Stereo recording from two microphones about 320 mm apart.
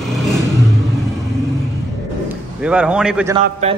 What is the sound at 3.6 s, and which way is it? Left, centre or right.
Mantra, right.